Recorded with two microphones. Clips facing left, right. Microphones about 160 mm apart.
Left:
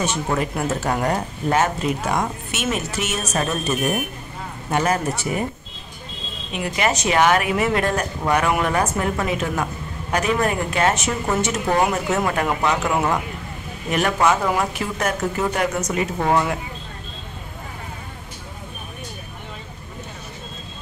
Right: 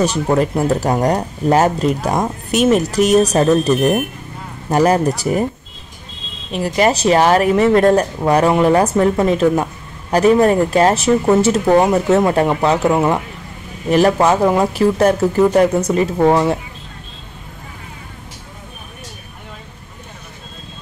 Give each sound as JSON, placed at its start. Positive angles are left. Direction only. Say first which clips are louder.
{"t": 0.0, "sound": "speech", "louder": "right 7 dB", "side_deg": -35}
{"t": 6.5, "sound": "speech", "louder": "right 7 dB", "side_deg": -35}